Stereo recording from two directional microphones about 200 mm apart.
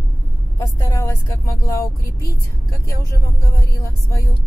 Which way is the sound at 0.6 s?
15° left (ahead or behind).